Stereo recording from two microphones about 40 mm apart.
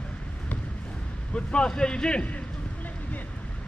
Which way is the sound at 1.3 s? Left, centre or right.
Left.